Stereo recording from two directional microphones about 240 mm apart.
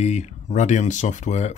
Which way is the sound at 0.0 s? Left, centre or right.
Left.